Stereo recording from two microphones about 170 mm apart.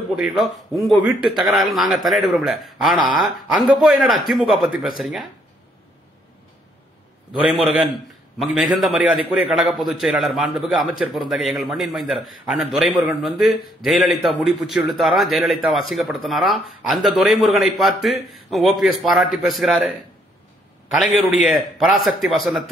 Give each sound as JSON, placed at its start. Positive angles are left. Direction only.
{"t": 0.1, "sound": "speech", "side_deg": 0}
{"t": 8.7, "sound": "speech", "side_deg": 0}
{"t": 21.0, "sound": "speech", "side_deg": 0}